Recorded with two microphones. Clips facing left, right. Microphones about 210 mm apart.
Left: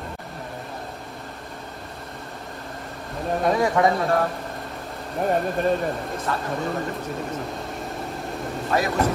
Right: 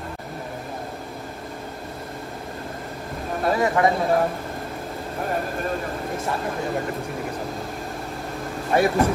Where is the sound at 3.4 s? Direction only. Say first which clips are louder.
Even; centre (ahead or behind).